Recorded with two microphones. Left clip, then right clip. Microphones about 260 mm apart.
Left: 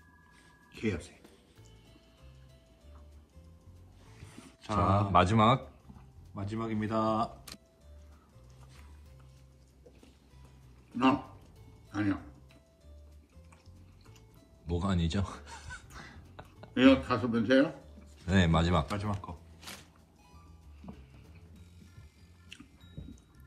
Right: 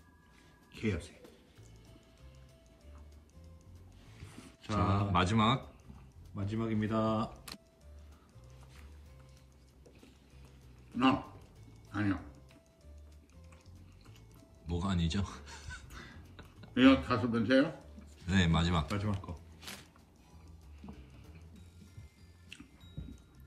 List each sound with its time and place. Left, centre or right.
0.7 s music: centre
4.7 s speech: centre
6.3 s speech: centre
10.9 s a sound: centre
11.9 s music: centre
14.7 s speech: centre
18.9 s speech: centre
19.6 s music: centre
22.5 s music: centre